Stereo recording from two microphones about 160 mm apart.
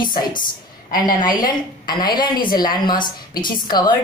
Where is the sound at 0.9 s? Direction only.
25° left (ahead or behind).